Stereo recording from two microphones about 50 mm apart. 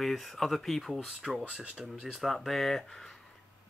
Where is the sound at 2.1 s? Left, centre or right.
Centre.